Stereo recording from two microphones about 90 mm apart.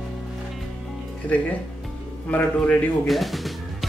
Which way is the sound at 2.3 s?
15° left (ahead or behind).